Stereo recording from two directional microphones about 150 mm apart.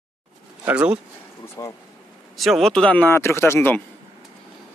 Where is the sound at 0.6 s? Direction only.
10° right (ahead or behind).